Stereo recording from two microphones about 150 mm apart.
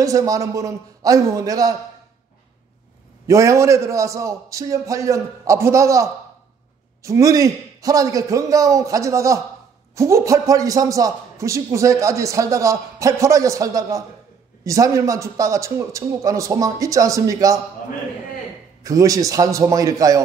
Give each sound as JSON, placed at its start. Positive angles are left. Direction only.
{"t": 0.0, "sound": "a man's voice", "side_deg": -20}
{"t": 3.3, "sound": "a man's voice", "side_deg": -20}
{"t": 18.8, "sound": "a man's voice", "side_deg": -20}